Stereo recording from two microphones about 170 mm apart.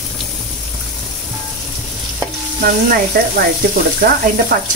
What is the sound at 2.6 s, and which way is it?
Speech, 60° right (ahead or behind).